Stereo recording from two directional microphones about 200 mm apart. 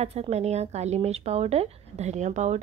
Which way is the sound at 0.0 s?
35° right (ahead or behind).